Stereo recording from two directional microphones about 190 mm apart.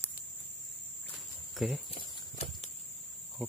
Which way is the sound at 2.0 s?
30° left (ahead or behind).